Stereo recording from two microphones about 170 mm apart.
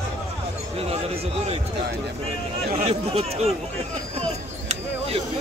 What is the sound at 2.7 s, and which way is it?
Speech, 35° right (ahead or behind).